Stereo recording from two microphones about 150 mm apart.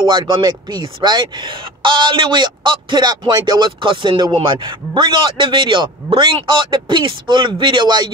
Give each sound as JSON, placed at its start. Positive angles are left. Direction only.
{"t": 0.0, "sound": "speech", "side_deg": -30}